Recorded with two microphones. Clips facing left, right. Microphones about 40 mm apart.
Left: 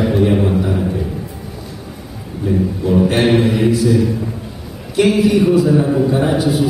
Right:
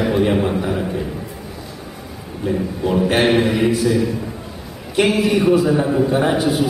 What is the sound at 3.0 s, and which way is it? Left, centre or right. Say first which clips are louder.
Speech: even; centre.